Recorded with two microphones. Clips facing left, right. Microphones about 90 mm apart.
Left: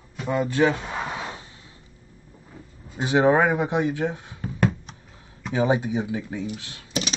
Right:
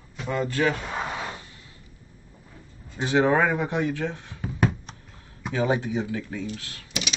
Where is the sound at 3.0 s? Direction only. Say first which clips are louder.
Left 2 dB; 15° left (ahead or behind).